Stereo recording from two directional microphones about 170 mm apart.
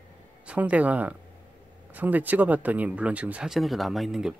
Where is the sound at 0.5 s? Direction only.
10° right (ahead or behind).